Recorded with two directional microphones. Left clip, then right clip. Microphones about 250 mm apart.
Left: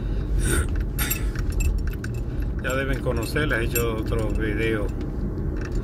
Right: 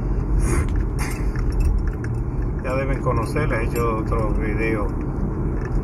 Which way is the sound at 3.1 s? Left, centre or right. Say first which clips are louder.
Right 2 dB; left.